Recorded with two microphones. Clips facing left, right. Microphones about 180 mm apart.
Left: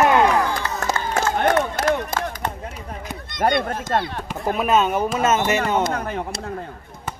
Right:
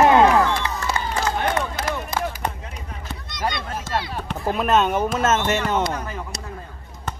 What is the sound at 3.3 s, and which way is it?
Speech, 55° left (ahead or behind).